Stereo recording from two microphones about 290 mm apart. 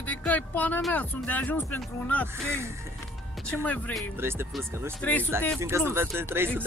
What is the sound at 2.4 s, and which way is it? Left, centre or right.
Speech, centre.